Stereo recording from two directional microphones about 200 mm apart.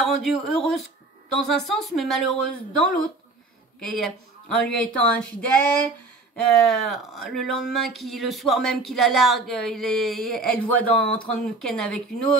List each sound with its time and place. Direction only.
0.0 s speech: centre (ahead or behind)
3.9 s speech: centre (ahead or behind)